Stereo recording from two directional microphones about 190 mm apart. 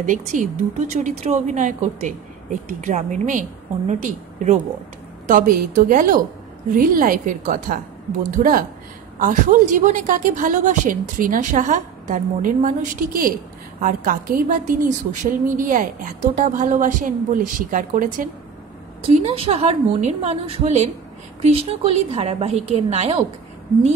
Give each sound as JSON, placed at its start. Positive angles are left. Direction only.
{"t": 0.0, "sound": "a woman's voice", "side_deg": -45}
{"t": 19.0, "sound": "a woman's voice", "side_deg": -30}